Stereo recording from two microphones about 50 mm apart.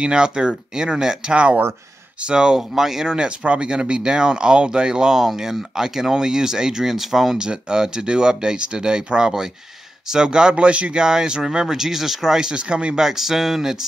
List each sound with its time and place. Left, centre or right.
0.0 s speech: centre
13.0 s speech: centre